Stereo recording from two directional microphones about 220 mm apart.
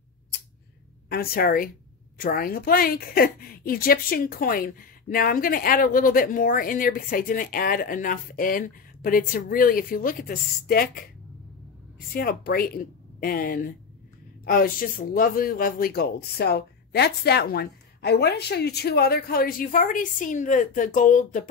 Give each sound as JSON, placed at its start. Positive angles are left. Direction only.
{"t": 1.0, "sound": "a woman's voice", "side_deg": 45}
{"t": 12.1, "sound": "a woman's voice", "side_deg": 45}